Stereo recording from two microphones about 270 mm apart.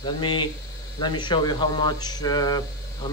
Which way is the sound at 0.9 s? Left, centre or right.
Centre.